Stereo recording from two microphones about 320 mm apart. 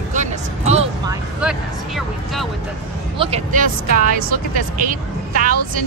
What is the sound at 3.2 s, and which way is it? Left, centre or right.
Speech, centre.